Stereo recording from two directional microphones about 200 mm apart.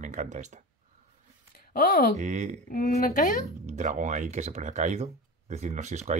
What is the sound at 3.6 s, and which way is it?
Speech, 35° right (ahead or behind).